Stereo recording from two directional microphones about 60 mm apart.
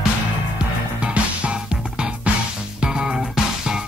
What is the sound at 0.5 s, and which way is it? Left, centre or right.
Music, right.